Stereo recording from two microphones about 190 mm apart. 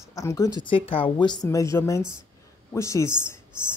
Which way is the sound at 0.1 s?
15° left (ahead or behind).